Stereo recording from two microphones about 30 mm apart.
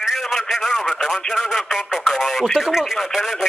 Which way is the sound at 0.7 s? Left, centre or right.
Left.